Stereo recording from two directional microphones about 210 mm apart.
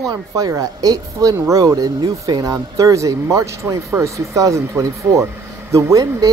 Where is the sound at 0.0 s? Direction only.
15° right (ahead or behind).